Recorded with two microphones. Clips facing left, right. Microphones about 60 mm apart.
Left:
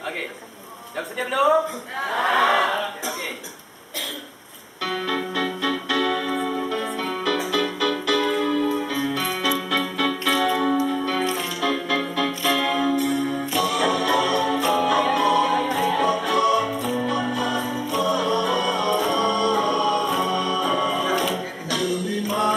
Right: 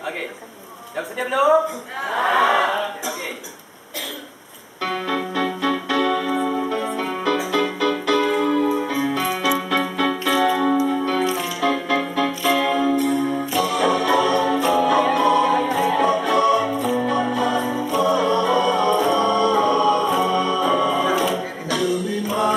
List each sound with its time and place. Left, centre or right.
0.9 s a man's voice: centre
4.8 s keyboard: centre
7.0 s music: centre
16.7 s music: centre
17.0 s music: right
17.6 s music: centre
18.0 s music: centre
18.9 s music: centre